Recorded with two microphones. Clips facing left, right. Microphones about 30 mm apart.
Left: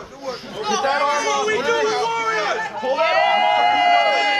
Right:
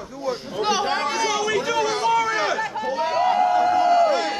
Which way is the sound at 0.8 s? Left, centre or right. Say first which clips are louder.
Left 5 dB; centre.